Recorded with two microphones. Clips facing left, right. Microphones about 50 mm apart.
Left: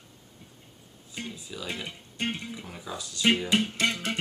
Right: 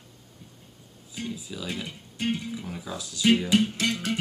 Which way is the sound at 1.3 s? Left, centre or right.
Centre.